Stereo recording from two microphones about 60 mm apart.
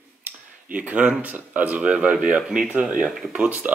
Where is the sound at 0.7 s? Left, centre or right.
Right.